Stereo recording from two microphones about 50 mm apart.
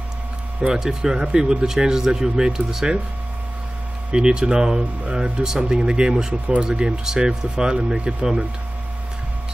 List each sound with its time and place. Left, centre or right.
0.6 s speech: centre
4.1 s speech: centre
6.4 s speech: right
6.7 s speech: centre